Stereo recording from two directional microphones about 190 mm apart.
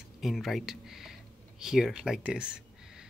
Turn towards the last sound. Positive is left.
turn(degrees=-5)  # may be behind; listen again after turning